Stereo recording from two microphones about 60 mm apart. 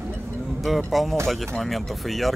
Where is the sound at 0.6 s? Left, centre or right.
Centre.